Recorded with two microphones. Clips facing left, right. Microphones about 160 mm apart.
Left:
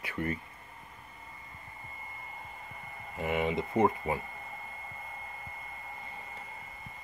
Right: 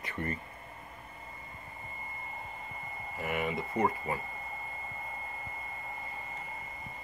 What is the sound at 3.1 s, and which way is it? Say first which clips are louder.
Speech: left 3 dB; 20° left (ahead or behind).